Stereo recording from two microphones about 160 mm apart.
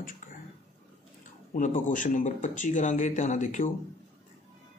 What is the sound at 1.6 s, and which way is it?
Speech, 55° left (ahead or behind).